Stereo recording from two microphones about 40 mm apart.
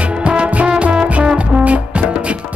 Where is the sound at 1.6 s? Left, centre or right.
Right.